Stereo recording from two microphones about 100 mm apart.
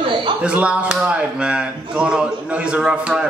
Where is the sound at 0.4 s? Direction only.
15° right (ahead or behind).